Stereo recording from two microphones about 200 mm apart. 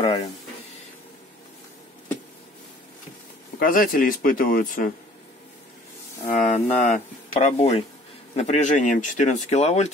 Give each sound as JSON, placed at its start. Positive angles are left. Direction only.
{"t": 0.0, "sound": "a sound", "side_deg": 30}
{"t": 3.5, "sound": "speech", "side_deg": 45}
{"t": 6.2, "sound": "speech", "side_deg": 40}